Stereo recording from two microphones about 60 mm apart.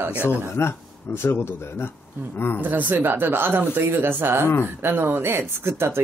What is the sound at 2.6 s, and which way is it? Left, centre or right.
Speech, right.